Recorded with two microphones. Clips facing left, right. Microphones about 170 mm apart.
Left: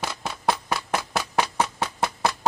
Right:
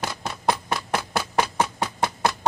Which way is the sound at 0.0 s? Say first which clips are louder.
Right 1 dB; centre (ahead or behind).